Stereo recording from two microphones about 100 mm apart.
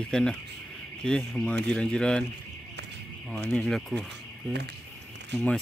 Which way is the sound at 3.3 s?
5° left (ahead or behind).